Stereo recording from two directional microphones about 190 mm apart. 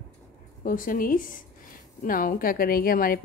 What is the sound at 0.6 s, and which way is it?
A woman's voice, 45° left (ahead or behind).